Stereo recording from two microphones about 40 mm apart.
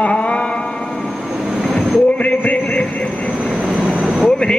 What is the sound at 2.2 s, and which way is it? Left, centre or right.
Music, left.